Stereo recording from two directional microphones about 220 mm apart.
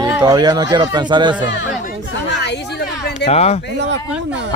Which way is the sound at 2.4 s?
50° left (ahead or behind).